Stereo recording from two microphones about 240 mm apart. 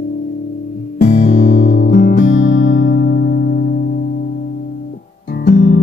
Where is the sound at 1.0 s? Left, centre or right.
Left.